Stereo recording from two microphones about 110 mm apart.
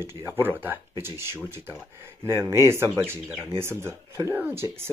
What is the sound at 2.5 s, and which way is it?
Speech, 25° right (ahead or behind).